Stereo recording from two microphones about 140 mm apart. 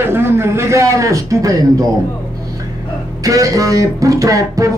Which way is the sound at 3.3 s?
25° right (ahead or behind).